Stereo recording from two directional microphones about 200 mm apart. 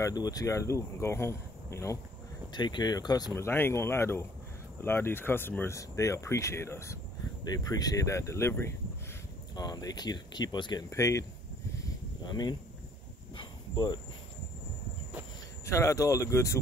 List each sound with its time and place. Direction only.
0.0 s speech: 20° left (ahead or behind)
11.7 s insect: 20° left (ahead or behind)
15.6 s speech: 15° left (ahead or behind)